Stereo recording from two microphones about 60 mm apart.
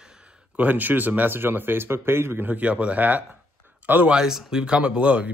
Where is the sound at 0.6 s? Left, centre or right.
Right.